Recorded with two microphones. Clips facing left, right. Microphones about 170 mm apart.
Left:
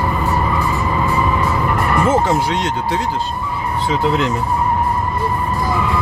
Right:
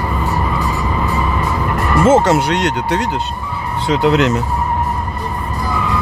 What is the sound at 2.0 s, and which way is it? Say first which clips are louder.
Speech: right 6 dB; 85° right.